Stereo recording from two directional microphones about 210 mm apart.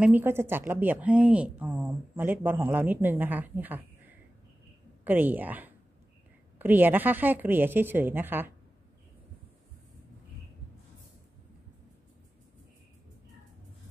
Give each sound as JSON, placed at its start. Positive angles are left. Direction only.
{"t": 0.0, "sound": "a woman's voice", "side_deg": -10}
{"t": 5.0, "sound": "a woman's voice", "side_deg": -10}